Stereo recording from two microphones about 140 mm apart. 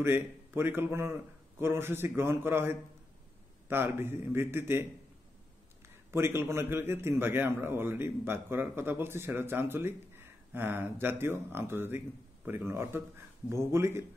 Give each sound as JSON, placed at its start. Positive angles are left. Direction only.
{"t": 0.0, "sound": "a man's voice", "side_deg": -15}
{"t": 6.1, "sound": "a man's voice", "side_deg": -15}